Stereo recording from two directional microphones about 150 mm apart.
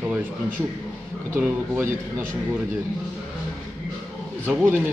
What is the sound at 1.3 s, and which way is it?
Speech, 15° right (ahead or behind).